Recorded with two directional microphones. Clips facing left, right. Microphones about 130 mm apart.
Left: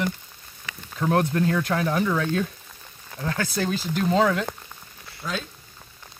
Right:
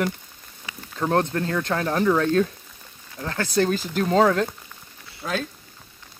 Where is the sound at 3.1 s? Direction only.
55° left (ahead or behind).